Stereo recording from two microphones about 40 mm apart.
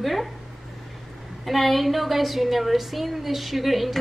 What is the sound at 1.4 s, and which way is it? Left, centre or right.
A woman's voice, centre.